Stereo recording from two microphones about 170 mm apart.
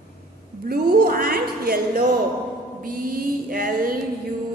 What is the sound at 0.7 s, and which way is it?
Music, 65° right (ahead or behind).